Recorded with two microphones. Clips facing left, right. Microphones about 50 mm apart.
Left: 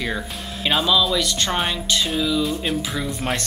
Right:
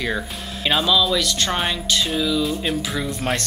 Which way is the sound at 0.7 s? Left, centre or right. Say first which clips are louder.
Even; centre.